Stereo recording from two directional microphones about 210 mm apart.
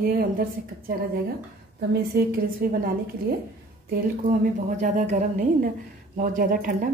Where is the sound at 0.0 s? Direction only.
45° right (ahead or behind).